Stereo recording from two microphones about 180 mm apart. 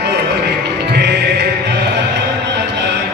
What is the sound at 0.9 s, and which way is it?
Music, 65° right (ahead or behind).